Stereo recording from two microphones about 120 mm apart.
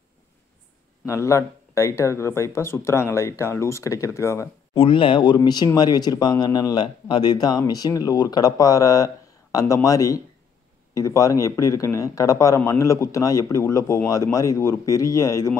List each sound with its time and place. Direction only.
1.0 s speech: 25° left (ahead or behind)
4.7 s speech: 45° left (ahead or behind); by 15.5 s 25° left (ahead or behind)